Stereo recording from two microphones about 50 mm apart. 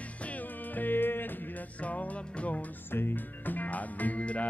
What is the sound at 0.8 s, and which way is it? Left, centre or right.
Music, left.